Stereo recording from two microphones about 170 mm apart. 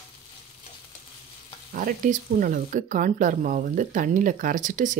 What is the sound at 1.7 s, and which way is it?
Speech, 55° right (ahead or behind).